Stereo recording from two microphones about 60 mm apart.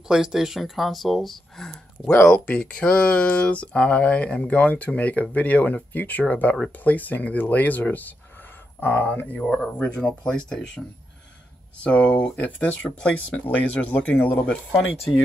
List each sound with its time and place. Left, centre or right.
0.1 s speech: centre
2.2 s speech: centre
11.8 s speech: left